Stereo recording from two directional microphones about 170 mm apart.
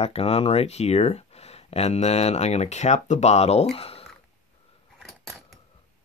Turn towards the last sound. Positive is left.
turn(degrees=0)  # may be behind; listen again after turning